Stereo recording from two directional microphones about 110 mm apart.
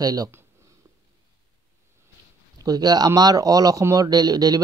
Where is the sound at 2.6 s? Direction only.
35° right (ahead or behind).